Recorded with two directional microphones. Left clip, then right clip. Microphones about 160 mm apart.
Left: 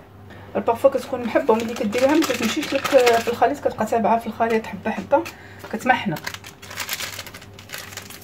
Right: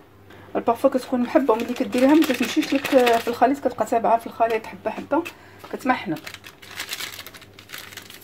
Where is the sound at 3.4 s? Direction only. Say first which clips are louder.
Even; 55° right (ahead or behind).